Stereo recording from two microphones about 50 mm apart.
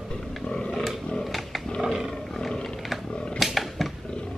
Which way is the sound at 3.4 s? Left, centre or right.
Centre.